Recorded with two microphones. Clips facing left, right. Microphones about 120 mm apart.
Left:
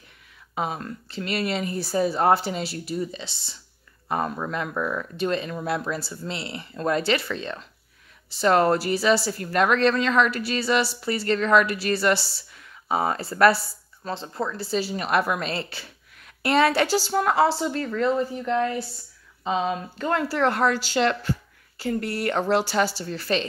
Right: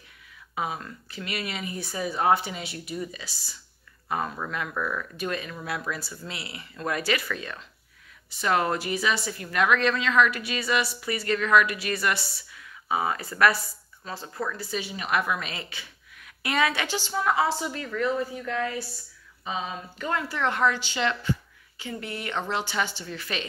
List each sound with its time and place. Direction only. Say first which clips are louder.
0.6 s speech: left 3 dB; 35° left (ahead or behind)
17.4 s speech: left 5 dB; 30° left (ahead or behind)